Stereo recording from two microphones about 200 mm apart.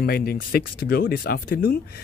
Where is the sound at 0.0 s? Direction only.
50° left (ahead or behind).